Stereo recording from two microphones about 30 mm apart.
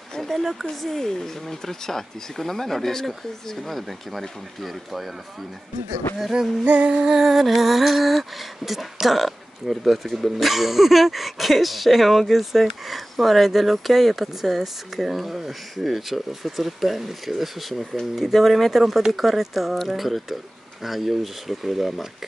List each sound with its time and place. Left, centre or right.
0.4 s speech: centre
0.7 s speech: centre
6.6 s music: right
7.0 s speech: centre